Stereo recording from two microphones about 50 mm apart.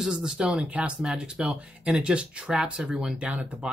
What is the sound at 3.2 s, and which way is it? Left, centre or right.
Speech, right.